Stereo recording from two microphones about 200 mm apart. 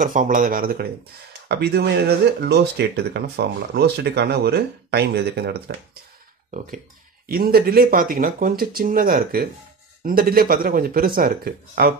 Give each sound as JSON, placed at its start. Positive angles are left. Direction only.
{"t": 0.0, "sound": "speech", "side_deg": -40}
{"t": 6.5, "sound": "speech", "side_deg": -45}